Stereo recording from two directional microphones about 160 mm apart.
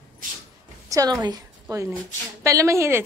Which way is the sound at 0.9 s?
20° right (ahead or behind).